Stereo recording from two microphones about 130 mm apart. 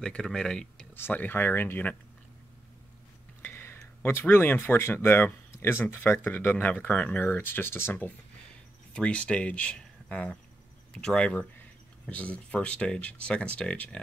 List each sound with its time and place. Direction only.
0.0 s speech: 5° left (ahead or behind)
0.9 s speech: 15° left (ahead or behind)
3.4 s speech: 20° left (ahead or behind)